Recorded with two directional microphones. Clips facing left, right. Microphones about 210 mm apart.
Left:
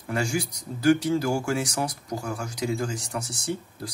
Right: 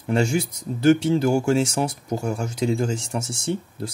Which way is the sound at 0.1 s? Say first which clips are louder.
Right 6 dB; 25° right (ahead or behind).